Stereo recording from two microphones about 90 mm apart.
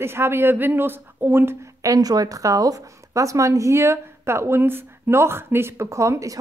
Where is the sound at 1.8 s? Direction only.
40° right (ahead or behind).